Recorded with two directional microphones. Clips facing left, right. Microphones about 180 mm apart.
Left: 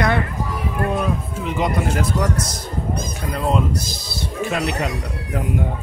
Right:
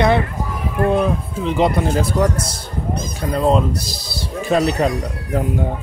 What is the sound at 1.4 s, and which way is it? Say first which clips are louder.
Speech: right 5 dB; 30° right (ahead or behind).